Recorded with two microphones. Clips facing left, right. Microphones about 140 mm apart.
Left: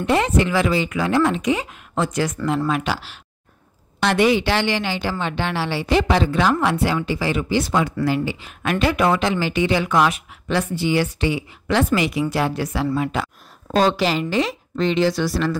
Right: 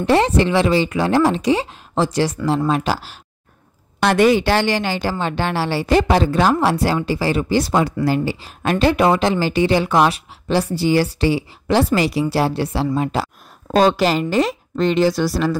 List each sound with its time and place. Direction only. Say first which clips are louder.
0.0 s speech: right 3 dB; 30° right (ahead or behind)
12.9 s a sound: right 2 dB; 35° right (ahead or behind)
13.7 s speech: right 3 dB; 50° right (ahead or behind)